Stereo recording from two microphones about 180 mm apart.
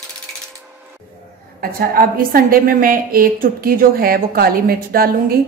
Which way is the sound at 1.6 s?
55° right (ahead or behind).